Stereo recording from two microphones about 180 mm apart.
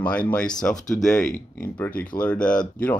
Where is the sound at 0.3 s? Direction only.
5° left (ahead or behind).